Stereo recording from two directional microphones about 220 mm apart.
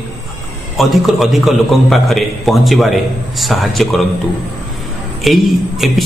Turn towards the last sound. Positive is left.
turn(degrees=0)  # may be behind; listen again after turning